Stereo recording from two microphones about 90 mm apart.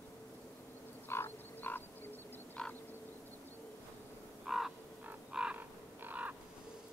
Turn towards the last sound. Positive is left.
turn(degrees=-20)  # may be behind; listen again after turning